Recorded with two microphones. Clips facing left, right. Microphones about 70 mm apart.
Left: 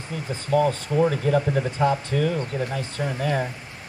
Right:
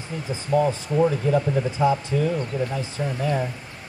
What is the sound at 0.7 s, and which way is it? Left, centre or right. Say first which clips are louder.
Speech: even; left.